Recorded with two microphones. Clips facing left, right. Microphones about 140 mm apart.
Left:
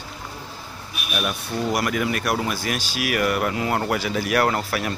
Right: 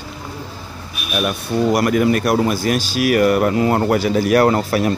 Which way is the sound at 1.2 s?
45° right (ahead or behind).